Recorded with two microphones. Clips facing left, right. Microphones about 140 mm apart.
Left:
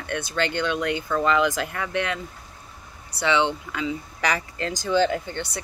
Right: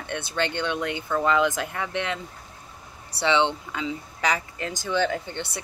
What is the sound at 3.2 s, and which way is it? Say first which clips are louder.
Speech: even; 25° right (ahead or behind).